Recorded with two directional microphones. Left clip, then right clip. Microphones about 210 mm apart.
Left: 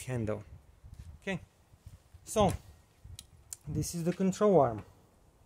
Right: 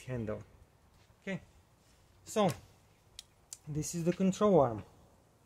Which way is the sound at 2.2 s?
25° left (ahead or behind).